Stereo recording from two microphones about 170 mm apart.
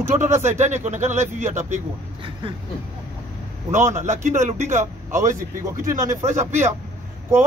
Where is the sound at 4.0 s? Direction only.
45° right (ahead or behind).